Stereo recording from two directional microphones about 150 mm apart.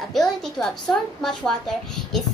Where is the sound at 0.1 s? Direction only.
5° left (ahead or behind).